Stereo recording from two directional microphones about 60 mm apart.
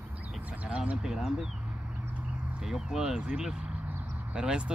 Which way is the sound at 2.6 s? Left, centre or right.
Centre.